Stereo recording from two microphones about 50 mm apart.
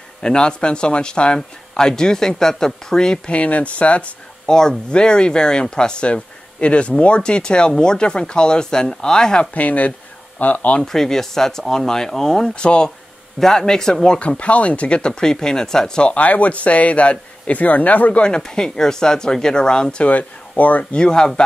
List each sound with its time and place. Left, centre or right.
0.2 s speech: centre
3.3 s speech: left
4.5 s speech: centre
9.5 s speech: left
10.8 s speech: centre
14.2 s speech: left
16.0 s speech: left
18.2 s speech: centre
20.1 s speech: left
20.9 s speech: centre